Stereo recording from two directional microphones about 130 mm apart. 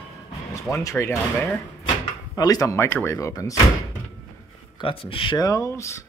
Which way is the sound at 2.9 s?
15° left (ahead or behind).